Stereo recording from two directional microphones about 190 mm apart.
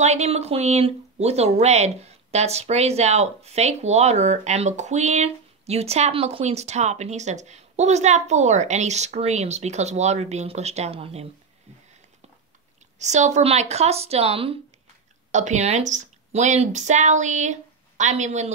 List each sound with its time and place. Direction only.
0.0 s speech: 35° right (ahead or behind)
13.0 s speech: 35° right (ahead or behind)